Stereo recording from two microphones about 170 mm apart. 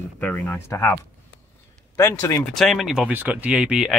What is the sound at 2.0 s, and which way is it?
Speech, 15° left (ahead or behind).